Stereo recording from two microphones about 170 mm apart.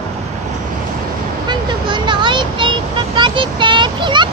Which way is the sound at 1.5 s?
25° right (ahead or behind).